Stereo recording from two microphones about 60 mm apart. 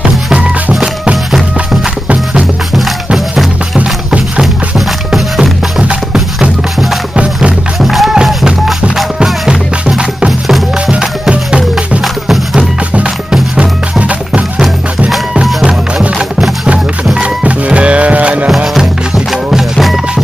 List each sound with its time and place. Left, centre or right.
0.3 s music: centre
1.3 s music: centre
3.7 s music: centre
4.7 s music: centre
7.8 s music: centre
8.9 s music: centre
12.0 s music: centre
12.9 s music: centre
15.6 s music: centre
18.8 s music: centre